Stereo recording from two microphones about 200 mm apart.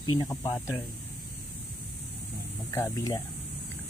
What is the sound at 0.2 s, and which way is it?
Speech, 15° left (ahead or behind).